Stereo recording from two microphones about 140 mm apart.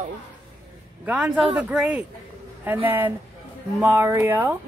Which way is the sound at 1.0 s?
10° right (ahead or behind).